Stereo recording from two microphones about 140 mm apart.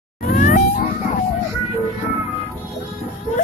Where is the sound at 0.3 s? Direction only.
70° left (ahead or behind).